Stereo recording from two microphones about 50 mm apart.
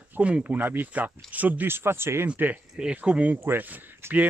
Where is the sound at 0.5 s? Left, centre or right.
Right.